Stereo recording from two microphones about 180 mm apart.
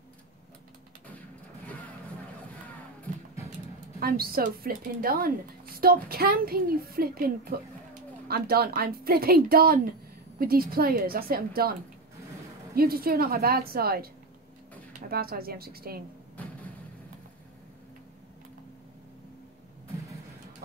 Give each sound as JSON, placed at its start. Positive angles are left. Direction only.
{"t": 4.0, "sound": "speech", "side_deg": -55}
{"t": 12.7, "sound": "speech", "side_deg": -55}